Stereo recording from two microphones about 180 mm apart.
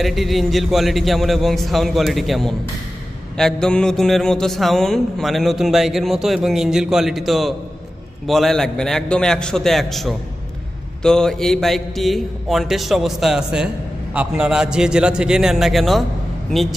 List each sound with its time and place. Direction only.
0.0 s mantra: centre (ahead or behind)